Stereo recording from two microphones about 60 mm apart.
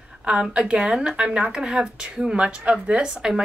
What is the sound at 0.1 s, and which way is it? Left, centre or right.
A woman's voice, centre.